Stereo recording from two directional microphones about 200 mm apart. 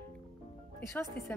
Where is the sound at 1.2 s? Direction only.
50° left (ahead or behind).